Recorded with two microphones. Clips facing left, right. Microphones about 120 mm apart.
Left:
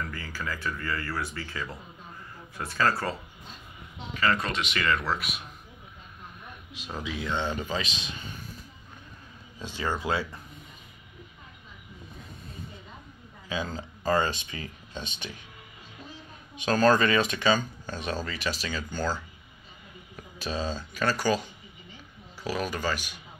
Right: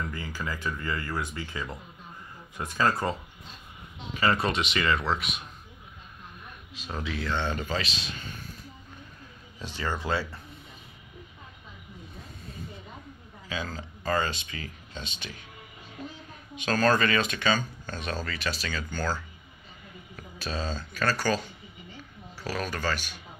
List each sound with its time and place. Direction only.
0.0 s speech: 20° right (ahead or behind)
4.7 s speech: centre (ahead or behind)
6.7 s speech: 10° left (ahead or behind)
9.6 s speech: 15° left (ahead or behind)
13.5 s speech: 20° left (ahead or behind)
16.6 s speech: 20° left (ahead or behind)
22.4 s speech: 15° left (ahead or behind)